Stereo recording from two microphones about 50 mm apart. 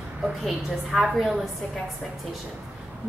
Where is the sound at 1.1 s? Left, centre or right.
Centre.